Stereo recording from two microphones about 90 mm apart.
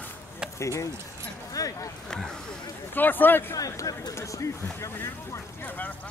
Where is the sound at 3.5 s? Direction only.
40° left (ahead or behind).